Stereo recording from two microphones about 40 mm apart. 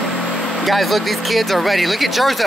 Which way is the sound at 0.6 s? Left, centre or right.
Centre.